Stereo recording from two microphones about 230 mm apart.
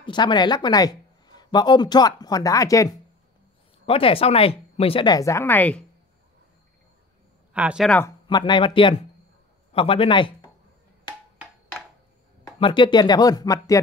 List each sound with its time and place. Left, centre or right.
0.0 s speech: centre
7.5 s speech: centre
8.3 s speech: centre
12.5 s speech: left